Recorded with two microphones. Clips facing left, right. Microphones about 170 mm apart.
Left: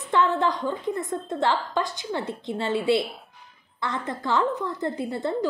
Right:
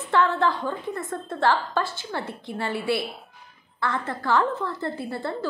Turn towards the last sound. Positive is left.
turn(degrees=20)  # may be behind; listen again after turning